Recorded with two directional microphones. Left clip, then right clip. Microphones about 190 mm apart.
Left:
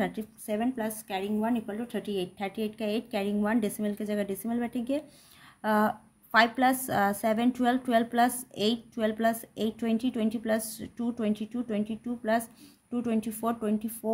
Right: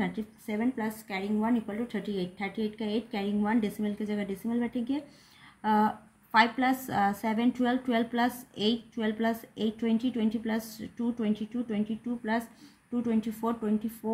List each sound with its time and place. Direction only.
0.0 s a woman's voice: 40° left (ahead or behind)
13.0 s a woman's voice: 40° left (ahead or behind)